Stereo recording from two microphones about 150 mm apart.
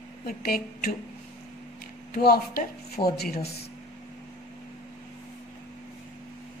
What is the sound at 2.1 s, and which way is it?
A woman's voice, 90° left.